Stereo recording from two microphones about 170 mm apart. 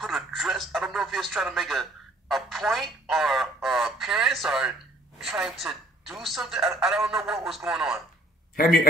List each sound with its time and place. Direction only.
0.0 s speech: centre (ahead or behind)
8.5 s a man's voice: 60° left (ahead or behind)